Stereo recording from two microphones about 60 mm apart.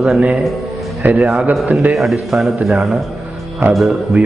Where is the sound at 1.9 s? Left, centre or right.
Centre.